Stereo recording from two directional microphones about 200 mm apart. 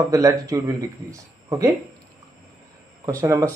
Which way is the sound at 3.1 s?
15° right (ahead or behind).